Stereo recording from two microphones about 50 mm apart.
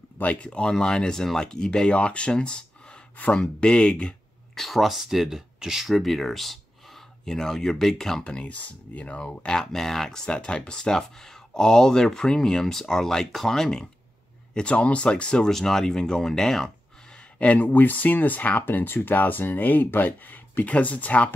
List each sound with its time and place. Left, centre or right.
0.2 s speech: left
4.6 s speech: centre
8.2 s speech: left
9.6 s speech: centre
17.4 s speech: left